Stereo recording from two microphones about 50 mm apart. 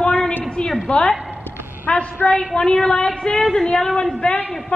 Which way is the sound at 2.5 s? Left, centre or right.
Centre.